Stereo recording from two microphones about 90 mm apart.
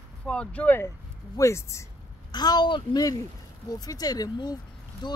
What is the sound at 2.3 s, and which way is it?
A woman's voice, 50° left (ahead or behind).